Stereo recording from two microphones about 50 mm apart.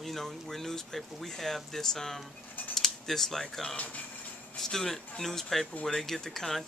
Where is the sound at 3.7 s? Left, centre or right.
Left.